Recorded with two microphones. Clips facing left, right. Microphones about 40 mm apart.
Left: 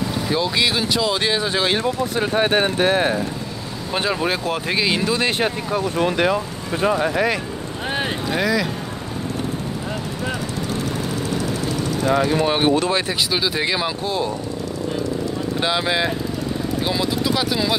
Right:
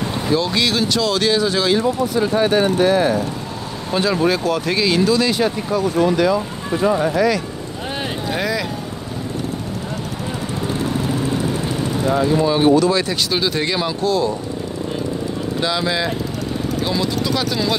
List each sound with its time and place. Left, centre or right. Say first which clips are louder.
0.3 s speech: right 2 dB; centre
1.7 s speech: right 3 dB; left
3.9 s speech: right 4 dB; centre; by 7.0 s left
7.0 s speech: right 3 dB; left
8.3 s speech: left 1 dB; centre
12.1 s speech: right 2 dB; left
13.3 s speech: right 1 dB; centre
14.0 s speech: right 5 dB; left
15.6 s speech: even; left